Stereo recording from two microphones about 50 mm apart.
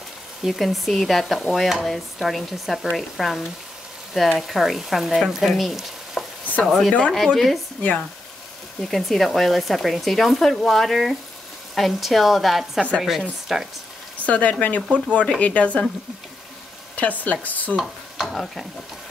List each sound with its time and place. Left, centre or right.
0.4 s speech: centre
6.9 s speech: centre
7.3 s speech: centre
8.8 s speech: centre
14.2 s speech: left
16.9 s speech: left
18.1 s stir: centre